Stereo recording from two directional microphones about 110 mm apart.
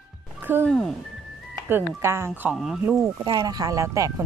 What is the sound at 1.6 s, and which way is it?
Speech, 20° right (ahead or behind).